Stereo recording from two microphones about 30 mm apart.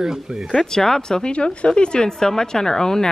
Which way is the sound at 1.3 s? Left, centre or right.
Left.